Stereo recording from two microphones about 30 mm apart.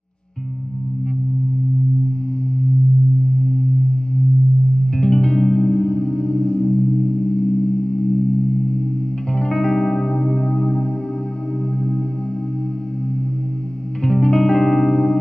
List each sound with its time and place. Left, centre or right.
4.9 s music: left
14.0 s music: left